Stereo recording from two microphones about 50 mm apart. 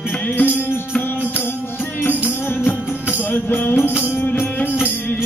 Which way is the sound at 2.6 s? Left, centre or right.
Left.